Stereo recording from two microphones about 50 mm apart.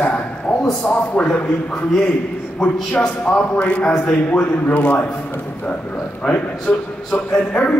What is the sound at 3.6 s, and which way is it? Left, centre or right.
A man's voice, left.